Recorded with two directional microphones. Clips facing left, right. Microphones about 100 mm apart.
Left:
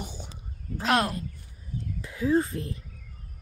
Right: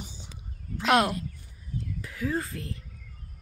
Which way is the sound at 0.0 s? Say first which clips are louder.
Left 5 dB; 55° left (ahead or behind).